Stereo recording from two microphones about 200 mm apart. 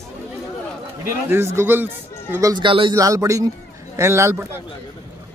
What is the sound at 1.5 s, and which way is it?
Speech, 10° right (ahead or behind).